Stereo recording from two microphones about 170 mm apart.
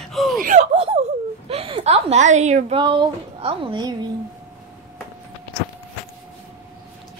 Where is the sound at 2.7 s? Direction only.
30° right (ahead or behind).